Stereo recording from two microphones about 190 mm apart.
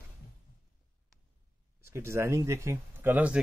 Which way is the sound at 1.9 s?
15° right (ahead or behind).